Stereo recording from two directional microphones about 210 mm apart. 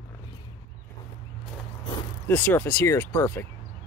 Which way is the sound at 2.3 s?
5° left (ahead or behind).